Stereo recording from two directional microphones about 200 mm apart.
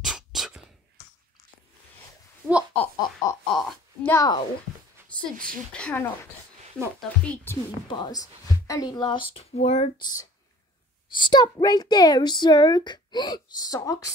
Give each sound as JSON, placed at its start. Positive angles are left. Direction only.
{"t": 0.0, "sound": "a sound", "side_deg": 0}
{"t": 2.7, "sound": "speech", "side_deg": 5}
{"t": 4.1, "sound": "a woman's voice", "side_deg": 15}
{"t": 5.2, "sound": "a woman's voice", "side_deg": 5}
{"t": 7.9, "sound": "a child's voice", "side_deg": 20}
{"t": 11.1, "sound": "a child's voice", "side_deg": 20}